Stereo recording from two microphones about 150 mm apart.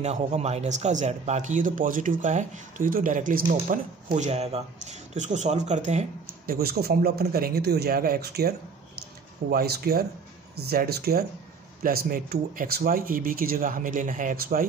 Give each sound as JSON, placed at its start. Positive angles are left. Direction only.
{"t": 0.0, "sound": "speech", "side_deg": -50}
{"t": 4.2, "sound": "speech", "side_deg": -45}
{"t": 6.4, "sound": "speech", "side_deg": -85}
{"t": 11.8, "sound": "speech", "side_deg": -75}